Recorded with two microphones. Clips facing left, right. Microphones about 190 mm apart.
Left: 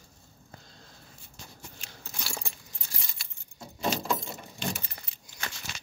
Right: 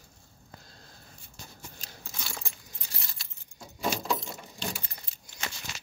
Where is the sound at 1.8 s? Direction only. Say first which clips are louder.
Right 1 dB; 35° right (ahead or behind).